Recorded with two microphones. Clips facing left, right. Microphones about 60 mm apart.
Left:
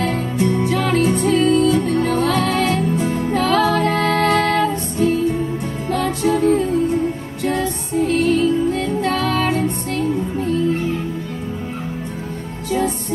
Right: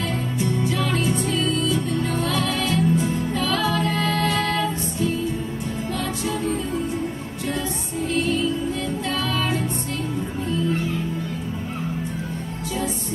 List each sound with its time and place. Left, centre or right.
0.0 s music: left
8.1 s music: left